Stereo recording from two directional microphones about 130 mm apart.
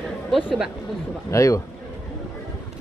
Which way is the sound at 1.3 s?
25° left (ahead or behind).